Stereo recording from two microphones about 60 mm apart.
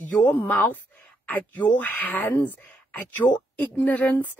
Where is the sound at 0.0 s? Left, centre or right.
Left.